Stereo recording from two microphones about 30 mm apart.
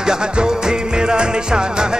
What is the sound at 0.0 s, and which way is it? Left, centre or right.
Music, right.